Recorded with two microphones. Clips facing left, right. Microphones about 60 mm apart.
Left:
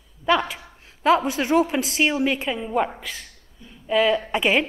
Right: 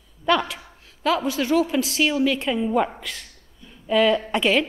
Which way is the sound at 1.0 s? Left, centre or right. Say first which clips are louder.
Left 3 dB; left.